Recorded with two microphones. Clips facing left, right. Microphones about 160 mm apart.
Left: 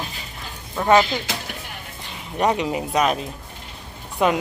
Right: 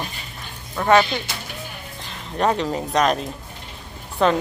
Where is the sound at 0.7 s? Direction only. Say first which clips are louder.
Even; 15° left (ahead or behind).